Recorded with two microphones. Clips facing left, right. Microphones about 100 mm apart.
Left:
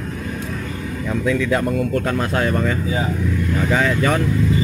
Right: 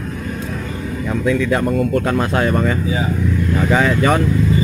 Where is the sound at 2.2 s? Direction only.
50° right (ahead or behind).